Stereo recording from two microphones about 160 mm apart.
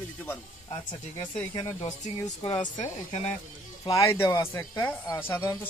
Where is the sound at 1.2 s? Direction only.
25° left (ahead or behind).